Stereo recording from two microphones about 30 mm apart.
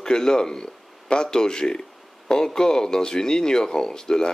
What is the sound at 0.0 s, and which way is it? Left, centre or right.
A man's voice, left.